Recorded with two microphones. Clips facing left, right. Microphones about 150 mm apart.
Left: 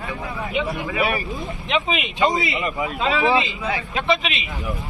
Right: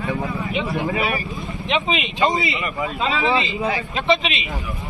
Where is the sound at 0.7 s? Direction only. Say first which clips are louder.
Right 2 dB; 25° right (ahead or behind).